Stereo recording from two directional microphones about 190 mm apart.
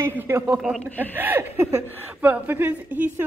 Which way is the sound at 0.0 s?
10° right (ahead or behind).